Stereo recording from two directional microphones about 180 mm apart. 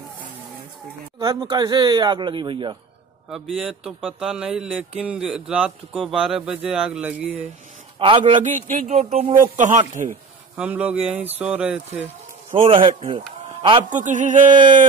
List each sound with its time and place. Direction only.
1.2 s speech: 20° right (ahead or behind)
3.3 s speech: centre (ahead or behind)
8.0 s speech: 30° right (ahead or behind)
8.4 s speech: 45° right (ahead or behind)
10.5 s speech: 10° right (ahead or behind)
12.6 s a man's voice: 30° right (ahead or behind)
13.8 s speech: 45° right (ahead or behind)
14.5 s speech: 25° right (ahead or behind)